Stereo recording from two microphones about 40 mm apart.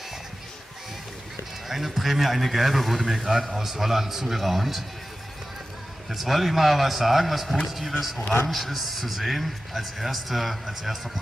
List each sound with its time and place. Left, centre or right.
1.7 s a man's voice: centre
6.0 s a man's voice: centre